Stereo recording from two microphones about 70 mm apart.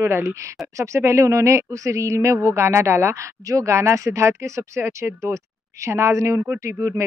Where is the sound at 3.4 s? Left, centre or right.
Right.